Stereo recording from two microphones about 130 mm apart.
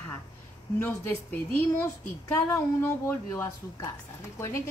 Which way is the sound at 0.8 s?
15° left (ahead or behind).